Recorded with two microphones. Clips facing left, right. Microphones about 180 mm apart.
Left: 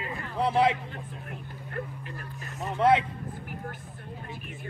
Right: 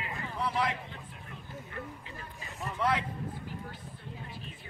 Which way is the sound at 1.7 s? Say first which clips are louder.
Left 8 dB; 60° left (ahead or behind).